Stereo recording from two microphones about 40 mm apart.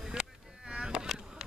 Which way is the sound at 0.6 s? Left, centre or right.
Right.